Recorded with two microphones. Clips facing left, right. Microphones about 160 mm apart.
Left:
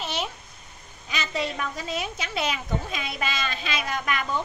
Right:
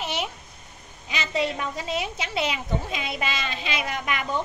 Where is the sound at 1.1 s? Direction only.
25° right (ahead or behind).